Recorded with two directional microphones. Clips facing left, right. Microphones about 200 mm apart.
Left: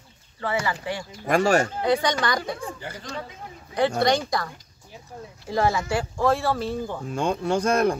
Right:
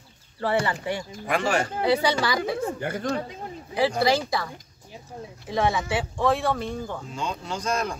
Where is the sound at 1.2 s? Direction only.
40° left (ahead or behind).